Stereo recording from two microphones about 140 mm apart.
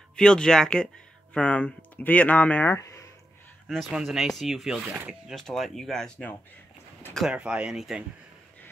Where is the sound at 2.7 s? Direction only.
20° left (ahead or behind).